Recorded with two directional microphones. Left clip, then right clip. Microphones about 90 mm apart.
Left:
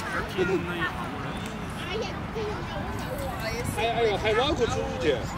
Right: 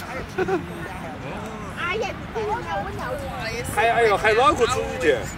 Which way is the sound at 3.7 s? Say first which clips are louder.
Right 8 dB; 40° right (ahead or behind).